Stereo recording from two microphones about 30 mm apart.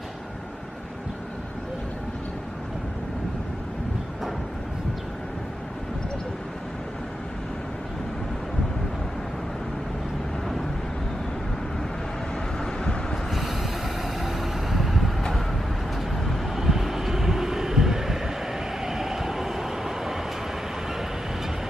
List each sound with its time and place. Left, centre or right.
12.5 s vehicle: left
13.3 s a sound: centre
16.5 s vehicle: centre